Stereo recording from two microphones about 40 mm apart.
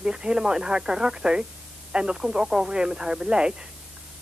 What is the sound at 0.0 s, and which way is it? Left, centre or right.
Speech, right.